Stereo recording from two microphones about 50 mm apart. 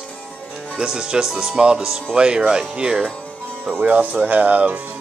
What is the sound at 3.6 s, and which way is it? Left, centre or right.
Speech, right.